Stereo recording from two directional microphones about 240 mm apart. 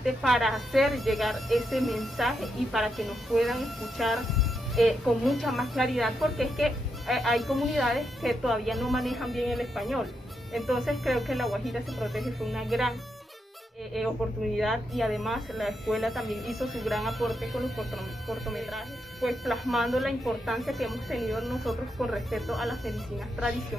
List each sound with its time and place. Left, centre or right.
0.0 s speech: centre
14.6 s speech: centre